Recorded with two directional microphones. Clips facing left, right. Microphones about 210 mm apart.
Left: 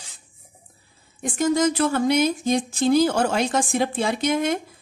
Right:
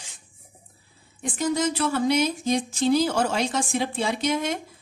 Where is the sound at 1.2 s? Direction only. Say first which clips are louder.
Left 4 dB; 45° left (ahead or behind).